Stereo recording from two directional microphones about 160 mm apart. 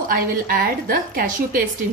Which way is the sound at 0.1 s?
65° right (ahead or behind).